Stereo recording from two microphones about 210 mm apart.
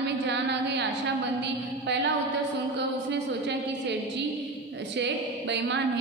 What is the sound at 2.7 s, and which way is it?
A woman's voice, 55° right (ahead or behind).